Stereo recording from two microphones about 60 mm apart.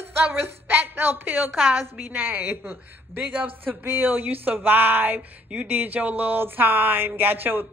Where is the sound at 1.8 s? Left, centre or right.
Right.